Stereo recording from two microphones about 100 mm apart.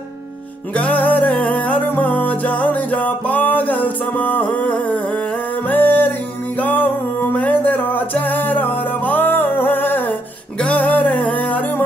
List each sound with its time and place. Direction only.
0.7 s music: 15° left (ahead or behind)